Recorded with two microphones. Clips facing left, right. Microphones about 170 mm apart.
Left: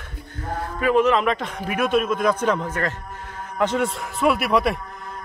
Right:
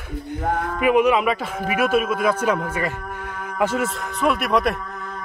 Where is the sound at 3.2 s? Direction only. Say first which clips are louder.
Right 4 dB; 65° right (ahead or behind).